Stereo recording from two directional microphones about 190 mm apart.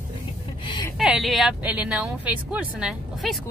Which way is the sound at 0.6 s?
25° left (ahead or behind).